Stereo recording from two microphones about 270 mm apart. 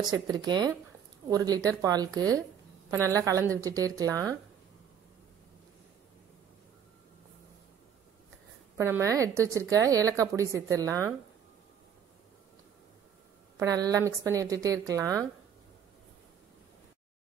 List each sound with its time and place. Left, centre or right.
0.3 s a woman's voice: centre
8.7 s a woman's voice: centre
13.6 s a woman's voice: centre